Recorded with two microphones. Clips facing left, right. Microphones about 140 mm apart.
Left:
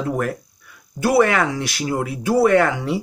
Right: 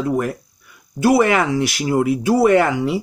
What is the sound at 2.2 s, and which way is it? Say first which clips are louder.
Speech: left 1 dB; 10° right (ahead or behind).